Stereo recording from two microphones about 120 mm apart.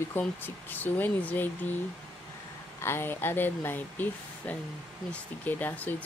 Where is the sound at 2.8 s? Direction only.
20° left (ahead or behind).